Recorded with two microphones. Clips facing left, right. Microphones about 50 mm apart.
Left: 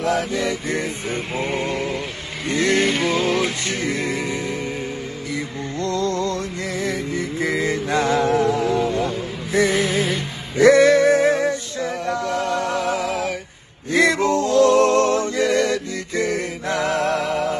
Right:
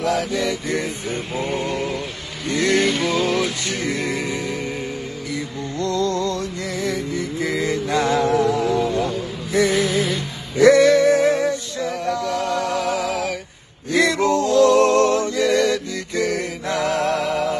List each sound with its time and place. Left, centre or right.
0.0 s music: left
13.9 s male singing: left
14.3 s music: left